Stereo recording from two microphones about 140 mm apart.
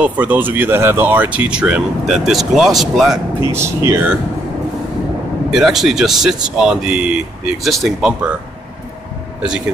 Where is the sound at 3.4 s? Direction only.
20° right (ahead or behind).